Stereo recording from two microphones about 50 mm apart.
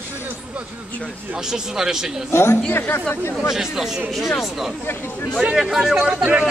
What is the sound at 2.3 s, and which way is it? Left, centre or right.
Speech, left.